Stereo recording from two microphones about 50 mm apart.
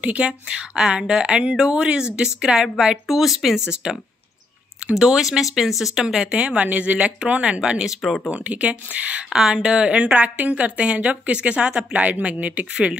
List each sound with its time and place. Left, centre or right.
0.0 s a woman's voice: right
3.1 s a woman's voice: centre; by 7.6 s right
7.6 s speech: centre
8.3 s a woman's voice: right
9.3 s a woman's voice: centre; by 12.6 s right